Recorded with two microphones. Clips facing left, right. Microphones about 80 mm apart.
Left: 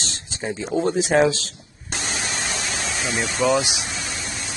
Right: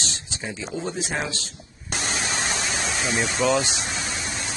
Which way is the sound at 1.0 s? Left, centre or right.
Left.